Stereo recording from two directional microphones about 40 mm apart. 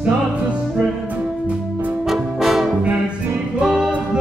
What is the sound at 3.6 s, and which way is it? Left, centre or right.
Music, centre.